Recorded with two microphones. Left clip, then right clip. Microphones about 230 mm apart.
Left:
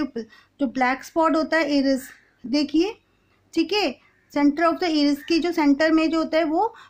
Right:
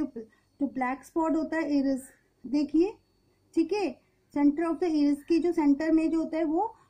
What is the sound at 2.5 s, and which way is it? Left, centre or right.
Speech, left.